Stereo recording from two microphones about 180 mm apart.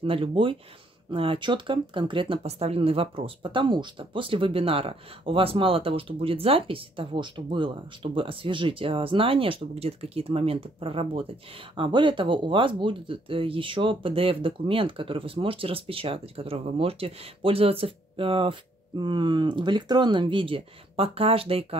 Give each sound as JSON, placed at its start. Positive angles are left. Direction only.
{"t": 0.0, "sound": "speech", "side_deg": -30}